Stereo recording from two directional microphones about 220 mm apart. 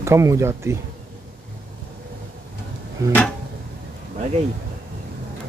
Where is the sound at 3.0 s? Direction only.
15° right (ahead or behind).